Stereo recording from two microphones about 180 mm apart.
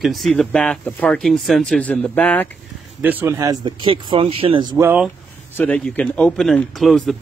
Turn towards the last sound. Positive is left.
turn(degrees=0)  # may be behind; listen again after turning